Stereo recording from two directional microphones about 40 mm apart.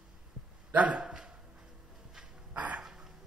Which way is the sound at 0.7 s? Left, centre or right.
Right.